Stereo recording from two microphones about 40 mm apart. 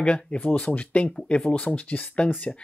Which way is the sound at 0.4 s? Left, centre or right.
Left.